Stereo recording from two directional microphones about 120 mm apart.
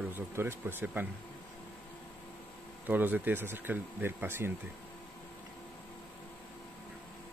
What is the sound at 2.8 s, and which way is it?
Speech, 15° right (ahead or behind).